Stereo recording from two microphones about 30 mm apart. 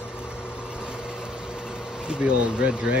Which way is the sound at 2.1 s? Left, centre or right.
Right.